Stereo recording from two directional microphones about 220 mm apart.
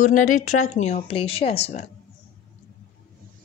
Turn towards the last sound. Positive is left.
turn(degrees=30)  # may be behind; listen again after turning